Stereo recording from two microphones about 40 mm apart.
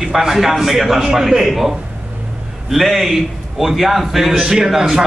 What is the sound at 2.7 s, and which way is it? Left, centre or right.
A man's voice, centre.